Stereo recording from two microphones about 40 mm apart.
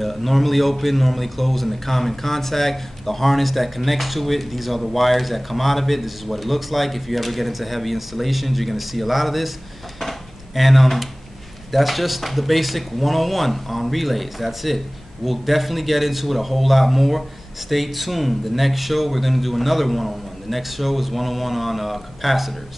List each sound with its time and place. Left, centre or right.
0.0 s a man's voice: centre
9.9 s a sound: centre
11.7 s a man's voice: centre